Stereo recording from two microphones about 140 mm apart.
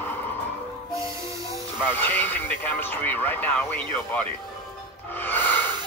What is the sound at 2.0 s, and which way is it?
Speech, 15° left (ahead or behind).